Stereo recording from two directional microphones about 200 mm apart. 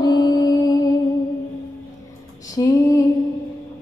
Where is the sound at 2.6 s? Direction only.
15° left (ahead or behind).